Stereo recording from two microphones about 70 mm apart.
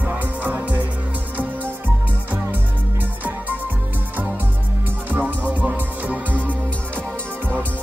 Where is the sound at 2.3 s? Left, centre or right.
Right.